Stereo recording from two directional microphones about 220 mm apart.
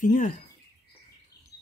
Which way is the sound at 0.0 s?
35° left (ahead or behind).